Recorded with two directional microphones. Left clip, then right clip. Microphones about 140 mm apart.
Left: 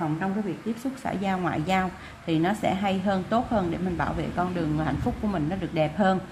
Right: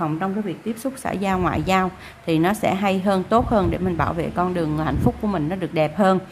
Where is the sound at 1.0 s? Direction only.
35° right (ahead or behind).